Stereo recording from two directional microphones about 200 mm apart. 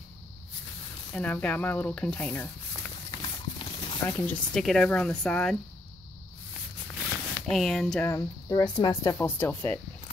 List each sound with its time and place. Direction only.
1.1 s speech: 10° left (ahead or behind)
3.1 s clip-clop: 25° left (ahead or behind)
4.1 s speech: 10° left (ahead or behind)
7.4 s speech: centre (ahead or behind)